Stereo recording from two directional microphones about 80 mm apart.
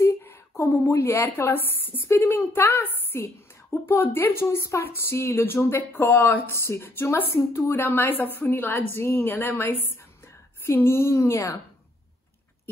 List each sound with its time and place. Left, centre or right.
0.0 s a woman's voice: left